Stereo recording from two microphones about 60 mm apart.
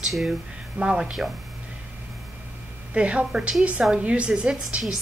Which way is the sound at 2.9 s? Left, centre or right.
Right.